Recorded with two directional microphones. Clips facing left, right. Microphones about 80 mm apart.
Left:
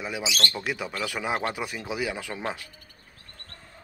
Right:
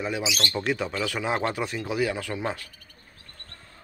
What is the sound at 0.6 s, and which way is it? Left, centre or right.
A man's voice, centre.